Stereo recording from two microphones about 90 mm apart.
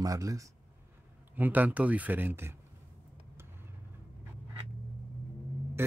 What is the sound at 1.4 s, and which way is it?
Speech, 20° right (ahead or behind).